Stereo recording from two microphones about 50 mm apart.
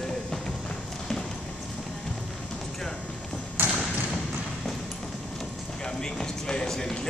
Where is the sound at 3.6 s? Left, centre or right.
Right.